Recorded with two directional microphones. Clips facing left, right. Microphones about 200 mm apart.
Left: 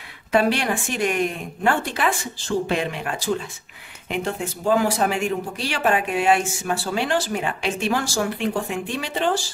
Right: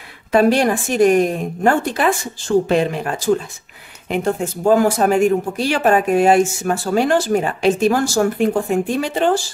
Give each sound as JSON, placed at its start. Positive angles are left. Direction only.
{"t": 0.3, "sound": "a woman's voice", "side_deg": -40}